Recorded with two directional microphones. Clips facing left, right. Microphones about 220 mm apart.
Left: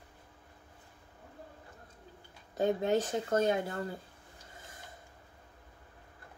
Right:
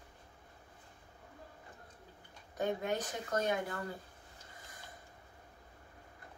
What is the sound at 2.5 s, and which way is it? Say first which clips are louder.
Speech: left 6 dB; 25° left (ahead or behind).